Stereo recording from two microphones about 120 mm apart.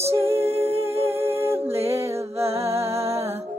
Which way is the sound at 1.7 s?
55° right (ahead or behind).